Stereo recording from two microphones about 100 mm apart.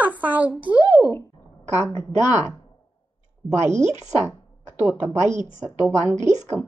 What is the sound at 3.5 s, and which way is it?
Speech, 25° right (ahead or behind).